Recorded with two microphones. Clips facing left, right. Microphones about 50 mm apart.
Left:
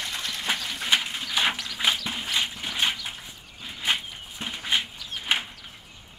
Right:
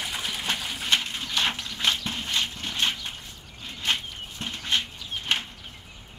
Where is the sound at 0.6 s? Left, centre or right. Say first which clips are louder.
Even; centre.